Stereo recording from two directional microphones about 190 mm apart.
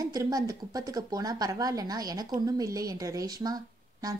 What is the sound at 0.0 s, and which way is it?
A woman's voice, 20° right (ahead or behind).